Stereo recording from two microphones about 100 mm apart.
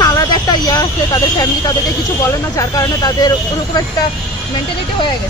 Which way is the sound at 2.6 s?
40° left (ahead or behind).